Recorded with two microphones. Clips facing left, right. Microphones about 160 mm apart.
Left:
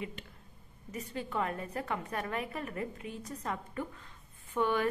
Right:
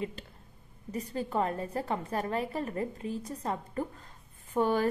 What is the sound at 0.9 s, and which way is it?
A woman's voice, 35° right (ahead or behind).